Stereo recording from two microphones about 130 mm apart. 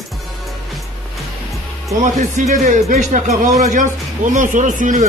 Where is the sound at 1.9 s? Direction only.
80° right.